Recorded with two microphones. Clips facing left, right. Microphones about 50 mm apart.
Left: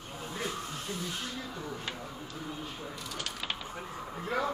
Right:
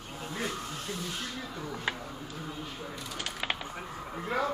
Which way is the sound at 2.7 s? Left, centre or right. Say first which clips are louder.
Right 1 dB; centre.